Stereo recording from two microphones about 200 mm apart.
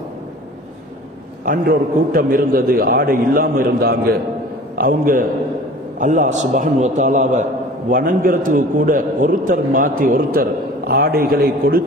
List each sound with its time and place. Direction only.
1.4 s a man's voice: 45° right (ahead or behind)